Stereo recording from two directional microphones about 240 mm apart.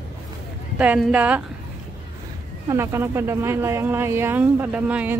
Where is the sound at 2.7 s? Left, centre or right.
Centre.